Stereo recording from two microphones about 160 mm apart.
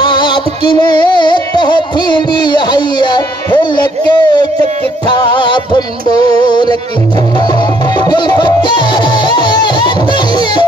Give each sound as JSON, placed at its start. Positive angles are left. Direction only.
{"t": 0.0, "sound": "music", "side_deg": 30}
{"t": 3.7, "sound": "a sound", "side_deg": 30}
{"t": 5.1, "sound": "music", "side_deg": 30}
{"t": 8.0, "sound": "music", "side_deg": 25}